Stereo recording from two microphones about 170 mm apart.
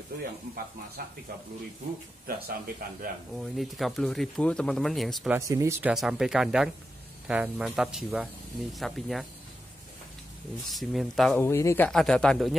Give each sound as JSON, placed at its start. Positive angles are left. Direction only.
{"t": 1.0, "sound": "speech", "side_deg": -65}
{"t": 2.2, "sound": "speech", "side_deg": -60}
{"t": 3.3, "sound": "speech", "side_deg": 0}
{"t": 5.3, "sound": "speech", "side_deg": -15}
{"t": 10.7, "sound": "speech", "side_deg": 0}
{"t": 11.3, "sound": "speech", "side_deg": 15}
{"t": 11.9, "sound": "speech", "side_deg": 5}